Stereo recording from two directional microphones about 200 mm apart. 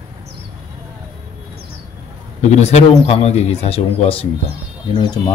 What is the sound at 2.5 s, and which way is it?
A man's voice, 35° left (ahead or behind).